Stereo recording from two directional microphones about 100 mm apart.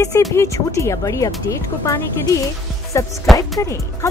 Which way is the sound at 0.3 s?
30° left (ahead or behind).